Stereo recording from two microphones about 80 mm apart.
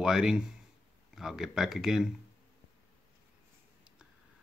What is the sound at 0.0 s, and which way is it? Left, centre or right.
Speech, centre.